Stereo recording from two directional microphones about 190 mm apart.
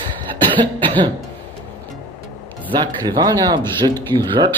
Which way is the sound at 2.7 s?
20° right (ahead or behind).